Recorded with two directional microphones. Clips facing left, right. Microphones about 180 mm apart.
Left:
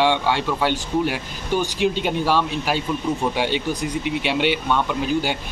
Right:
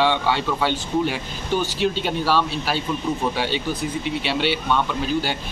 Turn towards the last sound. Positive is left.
turn(degrees=15)  # may be behind; listen again after turning